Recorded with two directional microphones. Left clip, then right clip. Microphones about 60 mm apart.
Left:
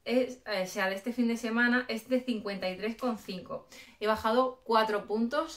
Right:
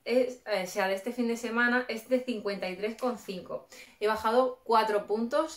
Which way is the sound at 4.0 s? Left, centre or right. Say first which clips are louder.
Right 1 dB; right.